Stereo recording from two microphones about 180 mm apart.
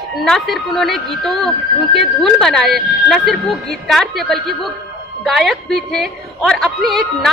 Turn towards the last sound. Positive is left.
turn(degrees=0)  # may be behind; listen again after turning